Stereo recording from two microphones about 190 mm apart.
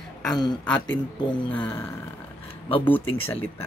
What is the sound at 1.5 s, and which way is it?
Speech, 10° left (ahead or behind).